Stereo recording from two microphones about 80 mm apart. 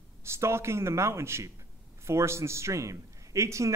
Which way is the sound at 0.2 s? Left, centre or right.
Right.